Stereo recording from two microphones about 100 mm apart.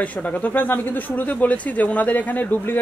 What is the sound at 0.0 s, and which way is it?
A woman's voice, 15° left (ahead or behind).